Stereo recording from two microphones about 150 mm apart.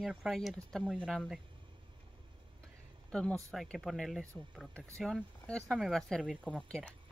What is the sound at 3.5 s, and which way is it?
Speech, centre (ahead or behind).